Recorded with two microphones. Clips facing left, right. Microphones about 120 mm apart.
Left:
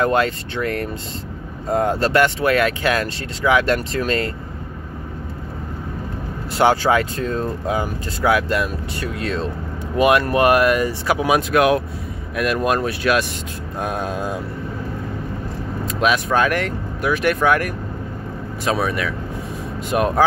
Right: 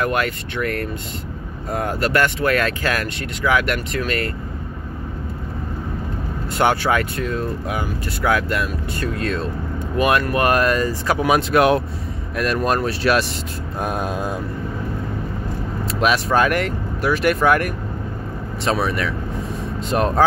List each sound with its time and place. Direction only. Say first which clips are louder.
0.0 s speech: left 3 dB; 25° left (ahead or behind)
6.6 s speech: left 2 dB; 20° left (ahead or behind)
7.2 s speech: left 1 dB; 30° left (ahead or behind); by 11.8 s centre (ahead or behind)
12.5 s speech: even; 15° left (ahead or behind)
12.8 s speech: right 1 dB; centre (ahead or behind)
13.7 s vehicle: even; 5° right (ahead or behind)
16.0 s speech: even; centre (ahead or behind)